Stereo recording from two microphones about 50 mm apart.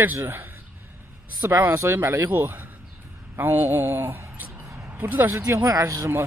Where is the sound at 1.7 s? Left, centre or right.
Right.